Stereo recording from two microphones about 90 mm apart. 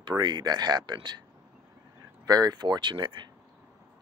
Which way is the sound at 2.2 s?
45° right (ahead or behind).